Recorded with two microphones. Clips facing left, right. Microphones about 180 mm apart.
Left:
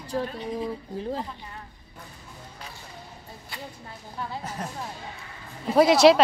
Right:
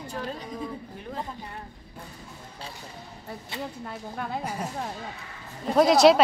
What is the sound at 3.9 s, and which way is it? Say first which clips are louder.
Speech: right 3 dB; 60° right (ahead or behind).